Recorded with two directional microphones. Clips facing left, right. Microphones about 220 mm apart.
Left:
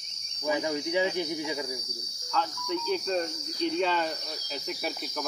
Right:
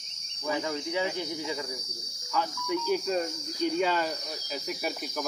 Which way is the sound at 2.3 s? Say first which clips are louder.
Right 1 dB; 10° right (ahead or behind).